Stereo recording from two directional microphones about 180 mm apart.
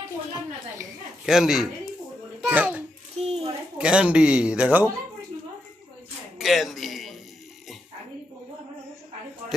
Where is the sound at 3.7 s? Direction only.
5° right (ahead or behind).